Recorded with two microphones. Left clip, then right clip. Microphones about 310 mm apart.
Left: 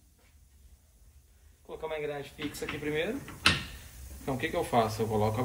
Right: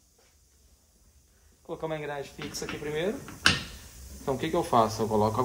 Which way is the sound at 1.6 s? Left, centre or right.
Right.